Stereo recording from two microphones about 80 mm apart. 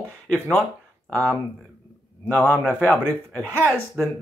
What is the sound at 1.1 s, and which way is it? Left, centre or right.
Speech, centre.